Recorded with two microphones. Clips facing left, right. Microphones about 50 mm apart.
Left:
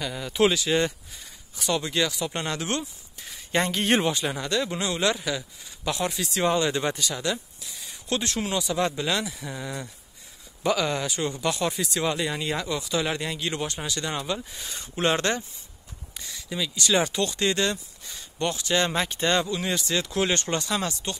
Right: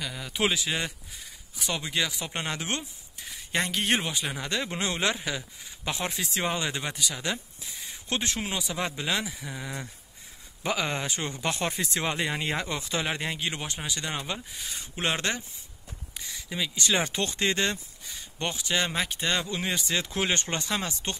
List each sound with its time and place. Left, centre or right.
0.0 s speech: centre
0.4 s speech: centre
0.7 s speech: centre; by 2.8 s right
2.8 s speech: centre
4.5 s speech: right
5.1 s speech: centre
7.8 s speech: right
9.4 s speech: centre
10.6 s speech: right
13.0 s speech: right
14.5 s speech: centre
16.2 s a sound: centre
16.5 s speech: right; by 19.4 s centre
19.5 s speech: centre